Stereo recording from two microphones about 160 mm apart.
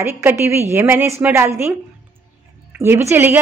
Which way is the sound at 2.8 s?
15° right (ahead or behind).